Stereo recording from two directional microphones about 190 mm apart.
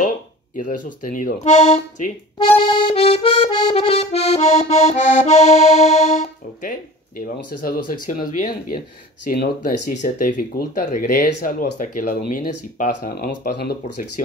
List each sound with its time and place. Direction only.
0.6 s speech: 45° left (ahead or behind)
2.3 s accordion: 30° left (ahead or behind)
7.3 s speech: 50° left (ahead or behind)
9.8 s speech: 45° left (ahead or behind)
11.8 s speech: 45° left (ahead or behind)